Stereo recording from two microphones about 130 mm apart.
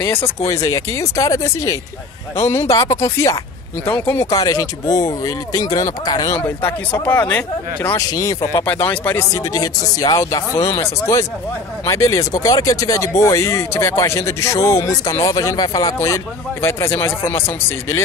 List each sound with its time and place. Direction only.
0.0 s speech: 20° left (ahead or behind)
6.4 s speech: 15° left (ahead or behind)
8.1 s speech: 30° left (ahead or behind)